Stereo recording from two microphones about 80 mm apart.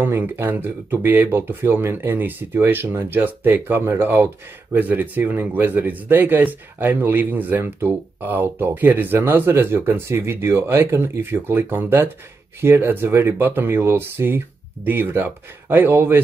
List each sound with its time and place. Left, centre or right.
0.0 s speech: right